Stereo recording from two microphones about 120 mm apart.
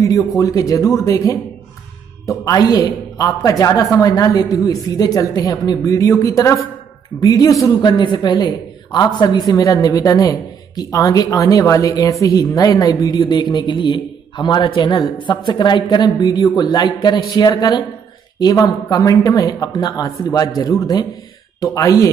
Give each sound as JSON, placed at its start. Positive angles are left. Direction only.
{"t": 0.4, "sound": "a woman's voice", "side_deg": 30}